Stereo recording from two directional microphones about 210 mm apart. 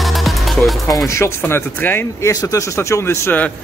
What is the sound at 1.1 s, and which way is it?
Speech, 10° left (ahead or behind).